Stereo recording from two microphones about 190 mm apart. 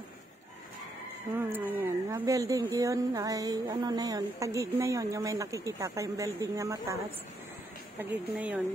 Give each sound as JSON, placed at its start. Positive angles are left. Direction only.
{"t": 1.3, "sound": "speech", "side_deg": -10}
{"t": 8.0, "sound": "speech", "side_deg": -10}